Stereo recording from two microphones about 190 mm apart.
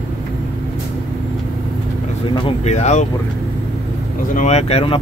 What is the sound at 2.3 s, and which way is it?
Speech, 30° left (ahead or behind).